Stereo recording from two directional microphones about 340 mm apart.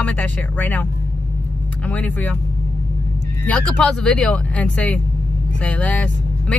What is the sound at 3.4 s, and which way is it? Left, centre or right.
A man's voice, centre.